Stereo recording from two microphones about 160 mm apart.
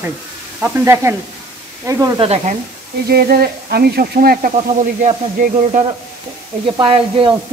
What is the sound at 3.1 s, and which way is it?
Speech, 70° right (ahead or behind).